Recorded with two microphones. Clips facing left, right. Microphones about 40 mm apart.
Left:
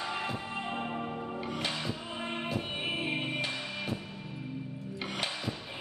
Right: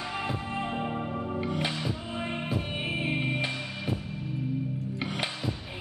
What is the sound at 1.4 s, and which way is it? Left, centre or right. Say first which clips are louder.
Music: right 3 dB; centre.